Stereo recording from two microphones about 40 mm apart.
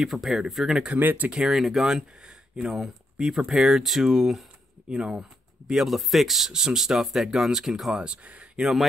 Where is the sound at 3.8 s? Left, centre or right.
Centre.